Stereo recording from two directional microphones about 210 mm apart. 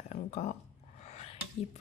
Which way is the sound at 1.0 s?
30° left (ahead or behind).